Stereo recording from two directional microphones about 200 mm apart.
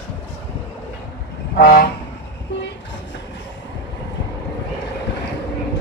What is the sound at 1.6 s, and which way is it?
Vehicle, 50° left (ahead or behind).